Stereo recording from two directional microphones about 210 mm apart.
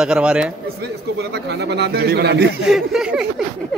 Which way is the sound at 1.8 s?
50° right (ahead or behind).